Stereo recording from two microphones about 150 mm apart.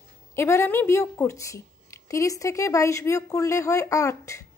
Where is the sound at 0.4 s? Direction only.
15° left (ahead or behind).